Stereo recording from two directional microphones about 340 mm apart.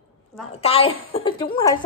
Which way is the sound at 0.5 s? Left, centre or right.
Centre.